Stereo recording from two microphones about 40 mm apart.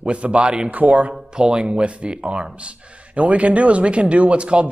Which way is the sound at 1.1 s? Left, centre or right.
Right.